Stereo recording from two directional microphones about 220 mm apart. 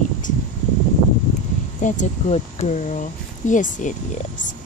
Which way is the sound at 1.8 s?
35° left (ahead or behind).